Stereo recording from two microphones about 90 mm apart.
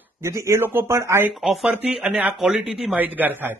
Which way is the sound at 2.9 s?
20° right (ahead or behind).